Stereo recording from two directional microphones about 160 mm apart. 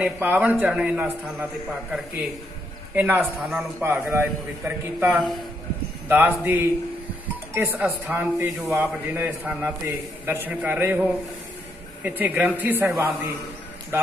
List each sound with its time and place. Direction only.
0.0 s a man's voice: 10° right (ahead or behind)
3.0 s a man's voice: 10° right (ahead or behind)